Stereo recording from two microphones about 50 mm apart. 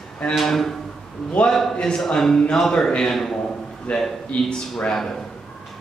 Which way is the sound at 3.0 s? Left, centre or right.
Centre.